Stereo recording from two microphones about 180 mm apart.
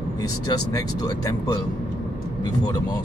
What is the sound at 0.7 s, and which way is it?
Speech, 20° left (ahead or behind).